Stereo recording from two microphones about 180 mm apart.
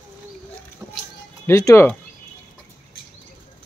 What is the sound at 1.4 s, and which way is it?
Speech, 15° left (ahead or behind).